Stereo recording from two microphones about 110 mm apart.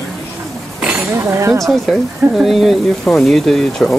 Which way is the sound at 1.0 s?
25° right (ahead or behind).